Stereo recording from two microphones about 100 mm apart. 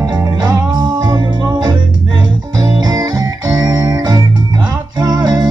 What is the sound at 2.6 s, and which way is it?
Music, 40° right (ahead or behind).